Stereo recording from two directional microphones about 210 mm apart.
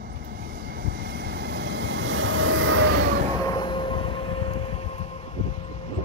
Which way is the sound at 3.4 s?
20° left (ahead or behind).